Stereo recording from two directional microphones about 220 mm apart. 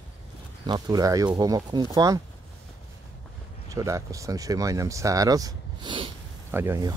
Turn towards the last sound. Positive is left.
turn(degrees=-10)  # may be behind; listen again after turning